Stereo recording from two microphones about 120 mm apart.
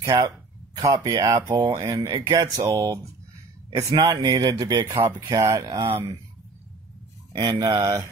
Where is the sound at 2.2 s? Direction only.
30° right (ahead or behind).